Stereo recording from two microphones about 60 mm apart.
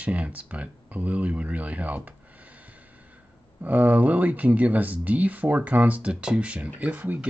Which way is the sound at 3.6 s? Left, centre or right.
Right.